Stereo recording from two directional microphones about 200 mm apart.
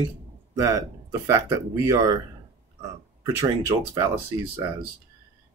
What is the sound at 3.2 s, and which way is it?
Speech, 20° right (ahead or behind).